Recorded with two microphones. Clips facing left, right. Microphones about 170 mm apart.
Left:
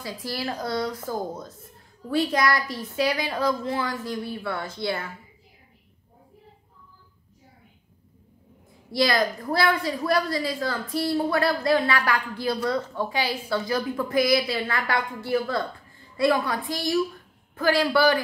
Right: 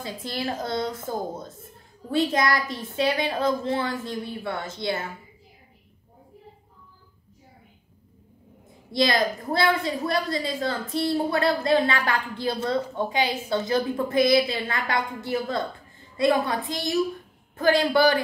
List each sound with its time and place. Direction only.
0.0 s a woman's voice: 25° right (ahead or behind)
8.9 s a woman's voice: 25° right (ahead or behind)